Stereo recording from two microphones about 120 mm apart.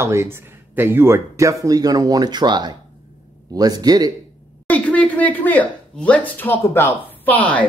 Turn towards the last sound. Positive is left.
turn(degrees=10)  # may be behind; listen again after turning